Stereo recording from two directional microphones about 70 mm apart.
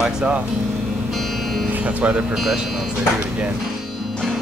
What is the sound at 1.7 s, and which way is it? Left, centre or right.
Speech, right.